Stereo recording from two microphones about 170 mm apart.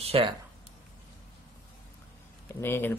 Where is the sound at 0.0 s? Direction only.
35° right (ahead or behind).